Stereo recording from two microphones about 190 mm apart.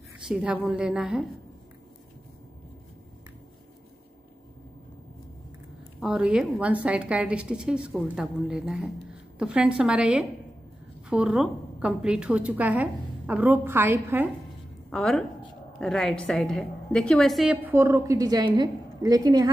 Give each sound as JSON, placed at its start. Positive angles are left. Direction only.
{"t": 0.3, "sound": "a woman's voice", "side_deg": -5}
{"t": 5.9, "sound": "a woman's voice", "side_deg": -5}
{"t": 14.9, "sound": "a woman's voice", "side_deg": 5}